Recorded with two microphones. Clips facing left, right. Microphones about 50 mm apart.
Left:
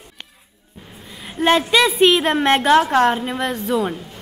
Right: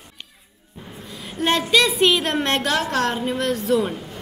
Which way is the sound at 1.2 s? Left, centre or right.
Centre.